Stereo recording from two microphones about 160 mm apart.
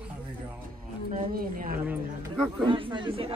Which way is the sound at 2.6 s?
30° right (ahead or behind).